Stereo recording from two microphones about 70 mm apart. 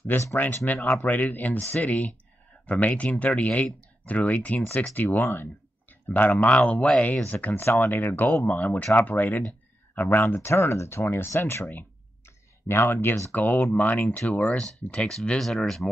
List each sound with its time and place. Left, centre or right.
0.0 s speech: left
1.0 s speech: left
7.4 s speech: left
13.3 s speech: left; by 15.9 s centre